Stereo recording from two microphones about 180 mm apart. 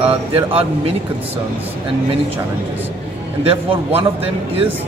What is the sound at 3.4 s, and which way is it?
Speech, 30° right (ahead or behind).